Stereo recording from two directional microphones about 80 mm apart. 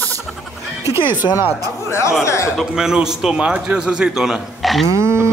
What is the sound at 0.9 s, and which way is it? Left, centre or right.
Speech, right.